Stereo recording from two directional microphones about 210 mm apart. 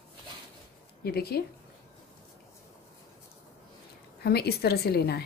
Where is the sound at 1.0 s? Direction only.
50° left (ahead or behind).